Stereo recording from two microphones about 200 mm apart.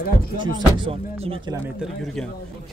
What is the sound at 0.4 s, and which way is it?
Speech, 20° right (ahead or behind).